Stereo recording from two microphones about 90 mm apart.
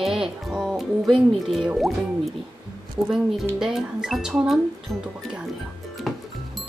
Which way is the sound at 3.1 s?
5° right (ahead or behind).